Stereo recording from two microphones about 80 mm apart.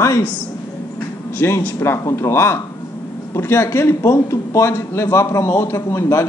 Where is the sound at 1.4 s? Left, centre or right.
Left.